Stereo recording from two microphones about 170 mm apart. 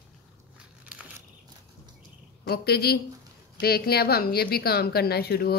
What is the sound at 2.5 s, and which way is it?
Speech, 70° left (ahead or behind).